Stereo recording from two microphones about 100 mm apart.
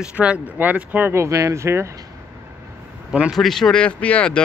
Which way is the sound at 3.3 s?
5° left (ahead or behind).